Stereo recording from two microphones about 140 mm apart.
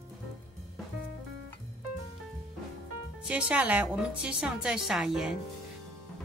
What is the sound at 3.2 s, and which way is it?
A woman's voice, 10° right (ahead or behind).